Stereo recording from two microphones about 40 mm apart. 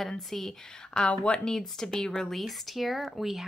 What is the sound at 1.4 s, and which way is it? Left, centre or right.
Speech, centre.